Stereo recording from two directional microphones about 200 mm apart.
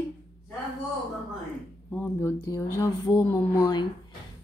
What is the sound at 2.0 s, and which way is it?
Speech, 15° left (ahead or behind).